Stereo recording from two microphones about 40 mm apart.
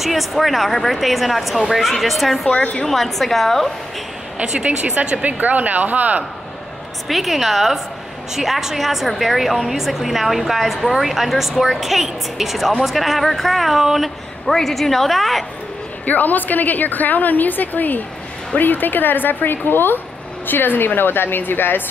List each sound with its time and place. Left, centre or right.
0.0 s a woman's voice: centre
4.4 s speech: right
5.0 s speech: right
7.1 s a woman's voice: centre
16.1 s a woman's voice: left